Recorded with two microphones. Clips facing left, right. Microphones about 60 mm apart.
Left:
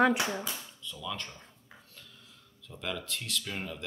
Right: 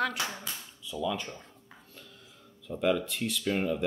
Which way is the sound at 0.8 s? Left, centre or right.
Centre.